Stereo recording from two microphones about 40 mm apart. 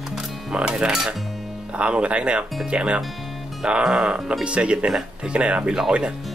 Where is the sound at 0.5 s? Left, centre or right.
Right.